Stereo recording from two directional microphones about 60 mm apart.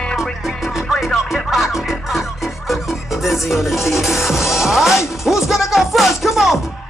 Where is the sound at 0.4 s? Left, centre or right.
Centre.